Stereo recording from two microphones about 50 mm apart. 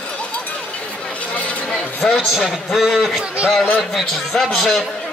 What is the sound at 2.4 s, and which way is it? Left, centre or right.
A man's voice, centre.